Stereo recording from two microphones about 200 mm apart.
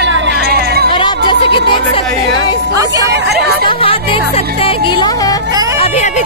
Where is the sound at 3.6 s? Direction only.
25° left (ahead or behind).